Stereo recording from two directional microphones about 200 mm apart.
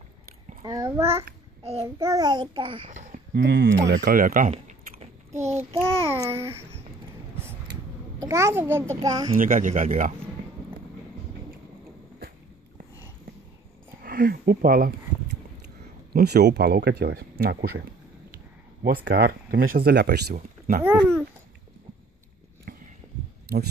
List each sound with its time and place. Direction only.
0.7 s a child's voice: 15° right (ahead or behind)
1.6 s child singing: 30° right (ahead or behind)
2.0 s a child's voice: 20° right (ahead or behind)
2.9 s a sound: 40° right (ahead or behind)
3.4 s speech: 50° right (ahead or behind)
4.5 s typing: 30° right (ahead or behind)
5.3 s child singing: 15° right (ahead or behind)
5.8 s a child's voice: 15° right (ahead or behind)
8.2 s a child's voice: 15° right (ahead or behind)
9.4 s speech: 40° right (ahead or behind)
14.0 s speech: 45° right (ahead or behind)
16.1 s speech: 50° right (ahead or behind)